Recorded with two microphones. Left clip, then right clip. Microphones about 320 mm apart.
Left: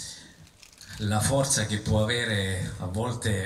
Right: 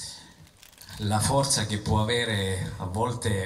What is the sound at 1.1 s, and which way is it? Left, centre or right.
Speech, centre.